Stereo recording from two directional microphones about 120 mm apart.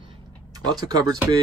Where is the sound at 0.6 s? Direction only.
35° right (ahead or behind).